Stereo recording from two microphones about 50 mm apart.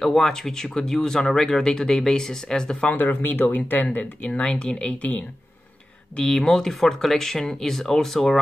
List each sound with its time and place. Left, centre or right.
0.0 s speech: centre
2.9 s speech: left
6.1 s speech: centre